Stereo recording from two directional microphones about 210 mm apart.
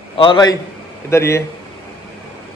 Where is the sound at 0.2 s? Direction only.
20° left (ahead or behind).